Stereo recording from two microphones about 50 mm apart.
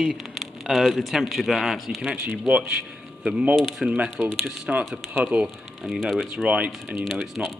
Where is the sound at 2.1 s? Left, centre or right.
Right.